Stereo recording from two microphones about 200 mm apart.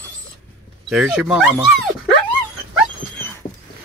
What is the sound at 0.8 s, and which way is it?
Speech, 5° right (ahead or behind).